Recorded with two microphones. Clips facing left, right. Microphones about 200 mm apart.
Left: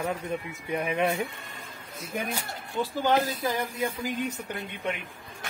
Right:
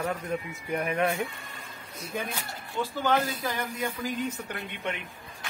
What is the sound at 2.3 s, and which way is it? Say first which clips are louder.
Speech: left 3 dB; 15° left (ahead or behind).